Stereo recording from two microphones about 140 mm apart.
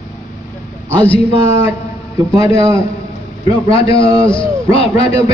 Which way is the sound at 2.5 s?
20° right (ahead or behind).